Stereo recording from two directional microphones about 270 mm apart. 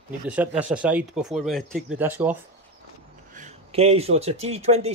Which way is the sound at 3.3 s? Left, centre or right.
Right.